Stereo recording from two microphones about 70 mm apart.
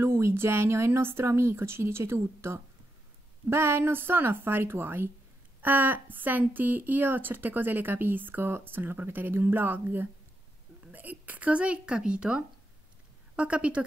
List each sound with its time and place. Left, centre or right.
0.0 s a woman's voice: right; by 13.8 s centre